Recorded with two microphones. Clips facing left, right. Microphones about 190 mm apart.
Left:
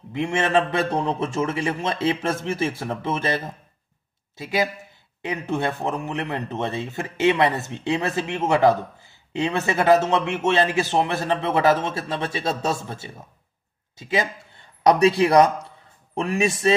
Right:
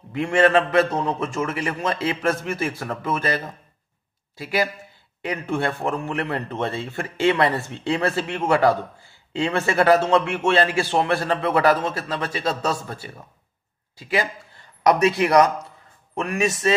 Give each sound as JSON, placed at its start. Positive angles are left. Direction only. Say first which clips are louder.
{"t": 0.1, "sound": "a man's voice", "louder": "right 3 dB", "side_deg": 20}